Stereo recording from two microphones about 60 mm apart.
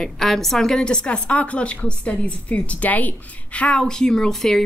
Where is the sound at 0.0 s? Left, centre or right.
Centre; by 3.8 s left.